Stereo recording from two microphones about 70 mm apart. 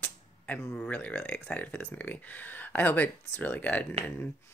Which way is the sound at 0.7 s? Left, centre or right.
Left.